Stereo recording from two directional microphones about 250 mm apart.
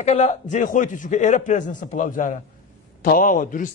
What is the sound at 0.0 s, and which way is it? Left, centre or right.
A man's voice, left.